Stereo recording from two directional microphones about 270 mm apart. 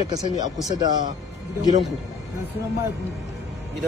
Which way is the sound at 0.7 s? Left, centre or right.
Centre.